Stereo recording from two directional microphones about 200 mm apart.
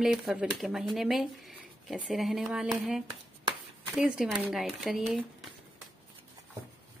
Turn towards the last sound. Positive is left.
turn(degrees=0)  # may be behind; listen again after turning